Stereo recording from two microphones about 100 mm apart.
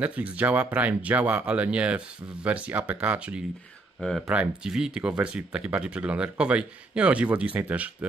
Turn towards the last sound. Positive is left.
turn(degrees=-15)  # may be behind; listen again after turning